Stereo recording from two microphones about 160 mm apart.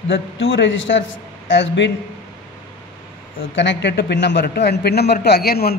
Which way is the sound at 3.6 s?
90° left.